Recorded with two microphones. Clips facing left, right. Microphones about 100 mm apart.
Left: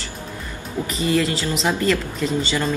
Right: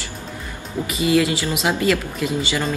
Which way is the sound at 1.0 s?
10° right (ahead or behind).